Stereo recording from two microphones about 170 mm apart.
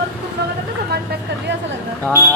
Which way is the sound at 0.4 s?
75° right (ahead or behind).